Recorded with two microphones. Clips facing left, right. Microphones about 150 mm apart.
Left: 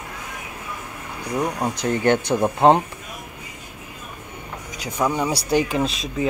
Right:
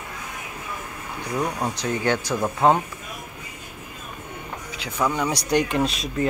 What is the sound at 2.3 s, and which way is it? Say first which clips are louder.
Speech: left 3 dB; 25° left (ahead or behind).